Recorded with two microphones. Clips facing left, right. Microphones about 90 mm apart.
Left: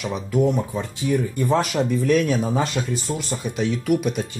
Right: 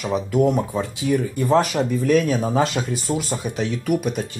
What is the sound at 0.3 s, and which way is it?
Speech, 5° right (ahead or behind).